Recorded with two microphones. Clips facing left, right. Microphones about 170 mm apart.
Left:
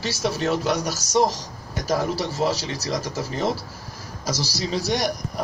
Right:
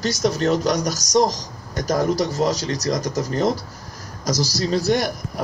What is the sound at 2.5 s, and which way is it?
Speech, 40° right (ahead or behind).